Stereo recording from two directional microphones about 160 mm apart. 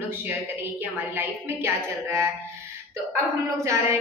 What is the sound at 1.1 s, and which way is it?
A woman's voice, 15° right (ahead or behind).